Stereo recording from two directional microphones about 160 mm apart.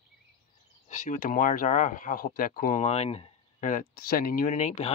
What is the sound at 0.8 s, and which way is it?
Speech, 50° left (ahead or behind).